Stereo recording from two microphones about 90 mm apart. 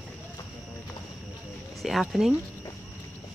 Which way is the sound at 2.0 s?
5° right (ahead or behind).